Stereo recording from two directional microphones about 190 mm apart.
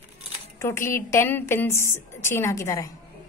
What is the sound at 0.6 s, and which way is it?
A woman's voice, 15° left (ahead or behind).